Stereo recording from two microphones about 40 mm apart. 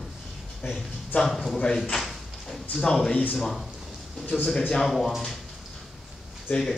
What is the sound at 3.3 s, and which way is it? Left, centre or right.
Speech, centre.